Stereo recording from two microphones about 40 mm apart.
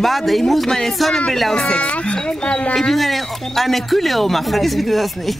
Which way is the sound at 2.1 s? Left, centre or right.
Left.